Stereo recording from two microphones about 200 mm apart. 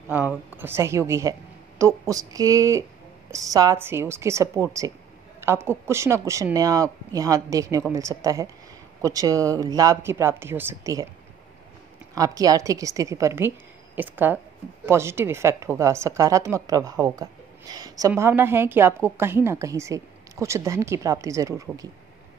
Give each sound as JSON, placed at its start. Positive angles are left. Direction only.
{"t": 0.1, "sound": "a woman's voice", "side_deg": -10}
{"t": 12.2, "sound": "a woman's voice", "side_deg": -15}